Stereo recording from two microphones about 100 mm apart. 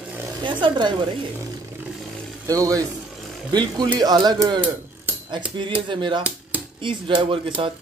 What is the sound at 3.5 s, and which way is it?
Speech, 45° right (ahead or behind).